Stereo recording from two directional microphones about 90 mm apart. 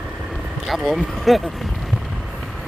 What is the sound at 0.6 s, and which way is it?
Speech, centre (ahead or behind).